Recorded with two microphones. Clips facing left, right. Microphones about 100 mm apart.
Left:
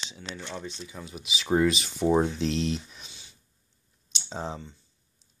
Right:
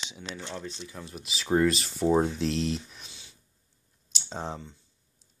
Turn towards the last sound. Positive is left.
turn(degrees=0)  # may be behind; listen again after turning